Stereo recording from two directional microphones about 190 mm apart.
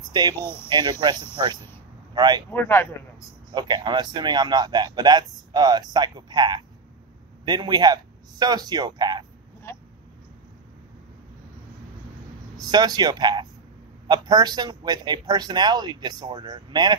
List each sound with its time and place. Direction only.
0.1 s a man's voice: 20° right (ahead or behind)
2.5 s speech: 10° left (ahead or behind)
3.5 s a man's voice: 25° right (ahead or behind)
12.5 s a man's voice: 20° right (ahead or behind)